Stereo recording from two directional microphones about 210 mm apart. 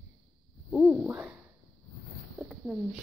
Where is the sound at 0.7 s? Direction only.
Centre (ahead or behind).